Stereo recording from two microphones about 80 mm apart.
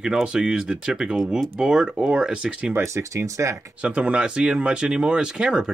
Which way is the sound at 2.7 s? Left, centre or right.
Right.